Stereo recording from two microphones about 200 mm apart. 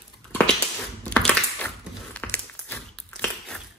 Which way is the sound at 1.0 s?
5° left (ahead or behind).